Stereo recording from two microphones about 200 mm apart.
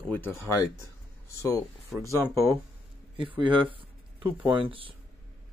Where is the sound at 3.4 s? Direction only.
25° right (ahead or behind).